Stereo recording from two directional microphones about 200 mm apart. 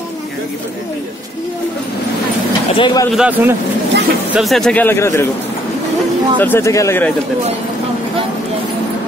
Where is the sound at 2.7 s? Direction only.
20° left (ahead or behind).